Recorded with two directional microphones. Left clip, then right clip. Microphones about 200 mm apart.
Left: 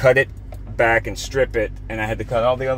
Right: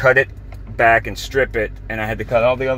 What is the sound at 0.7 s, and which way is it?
Speech, 10° left (ahead or behind).